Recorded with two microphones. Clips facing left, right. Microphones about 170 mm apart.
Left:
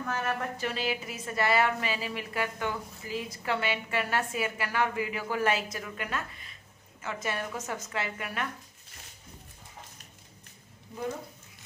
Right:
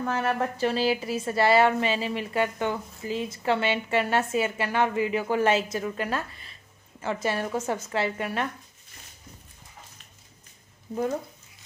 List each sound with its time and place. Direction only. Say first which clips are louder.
0.0 s a woman's voice: right 6 dB; 30° right (ahead or behind)